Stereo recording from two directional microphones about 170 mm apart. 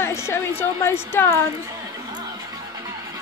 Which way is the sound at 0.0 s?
15° left (ahead or behind).